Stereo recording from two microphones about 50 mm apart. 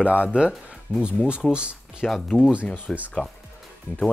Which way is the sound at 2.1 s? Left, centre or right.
Centre.